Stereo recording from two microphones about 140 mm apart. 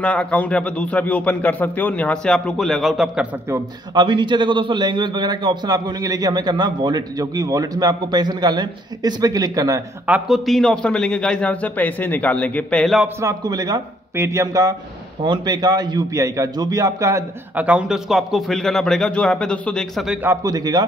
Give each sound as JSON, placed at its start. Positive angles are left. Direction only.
{"t": 0.0, "sound": "speech", "side_deg": 10}
{"t": 3.9, "sound": "a man's voice", "side_deg": -35}
{"t": 10.0, "sound": "speech", "side_deg": -5}
{"t": 12.8, "sound": "a man's voice", "side_deg": 0}
{"t": 13.2, "sound": "a man's voice", "side_deg": -25}
{"t": 17.6, "sound": "a man's voice", "side_deg": -10}
{"t": 20.4, "sound": "a man's voice", "side_deg": -25}